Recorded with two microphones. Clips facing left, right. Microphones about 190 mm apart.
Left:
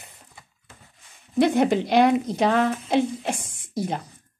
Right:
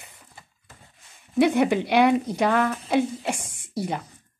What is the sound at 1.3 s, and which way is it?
Speech, 10° right (ahead or behind).